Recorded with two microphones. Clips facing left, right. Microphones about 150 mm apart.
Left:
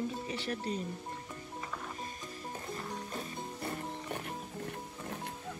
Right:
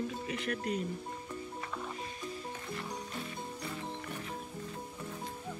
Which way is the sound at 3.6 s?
55° left (ahead or behind).